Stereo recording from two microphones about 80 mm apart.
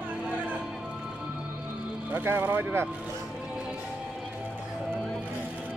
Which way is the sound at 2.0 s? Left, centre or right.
Right.